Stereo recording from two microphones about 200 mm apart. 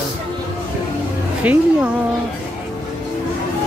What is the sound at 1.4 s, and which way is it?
Speech, 5° right (ahead or behind).